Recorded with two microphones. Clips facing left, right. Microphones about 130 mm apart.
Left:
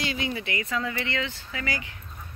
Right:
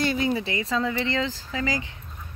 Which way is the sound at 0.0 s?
45° right (ahead or behind).